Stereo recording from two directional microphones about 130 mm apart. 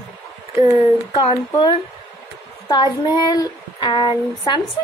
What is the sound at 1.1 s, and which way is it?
Speech, 40° left (ahead or behind).